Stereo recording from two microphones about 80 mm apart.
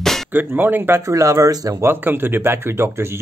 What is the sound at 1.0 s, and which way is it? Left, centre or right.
Speech, right.